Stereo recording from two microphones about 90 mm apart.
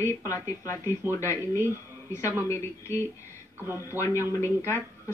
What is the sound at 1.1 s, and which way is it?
Speech, 35° left (ahead or behind).